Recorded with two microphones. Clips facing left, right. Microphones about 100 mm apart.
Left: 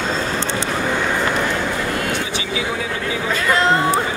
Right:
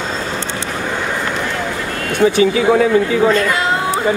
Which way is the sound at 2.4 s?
45° right (ahead or behind).